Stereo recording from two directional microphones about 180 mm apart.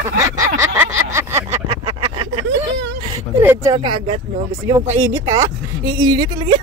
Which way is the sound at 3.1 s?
15° right (ahead or behind).